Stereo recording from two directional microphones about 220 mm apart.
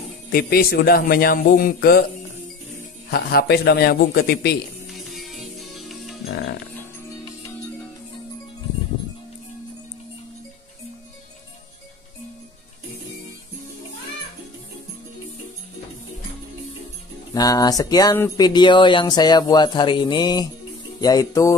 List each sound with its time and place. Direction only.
0.3 s speech: 40° left (ahead or behind)
3.1 s speech: 45° left (ahead or behind)
4.9 s music: centre (ahead or behind)
17.3 s speech: 15° left (ahead or behind)